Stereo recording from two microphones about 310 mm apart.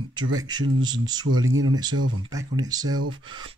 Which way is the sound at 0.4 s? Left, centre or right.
Centre.